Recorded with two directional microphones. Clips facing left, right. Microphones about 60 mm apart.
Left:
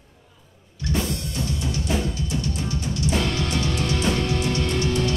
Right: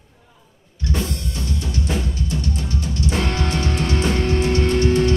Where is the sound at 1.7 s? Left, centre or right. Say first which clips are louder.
Right 1 dB; right.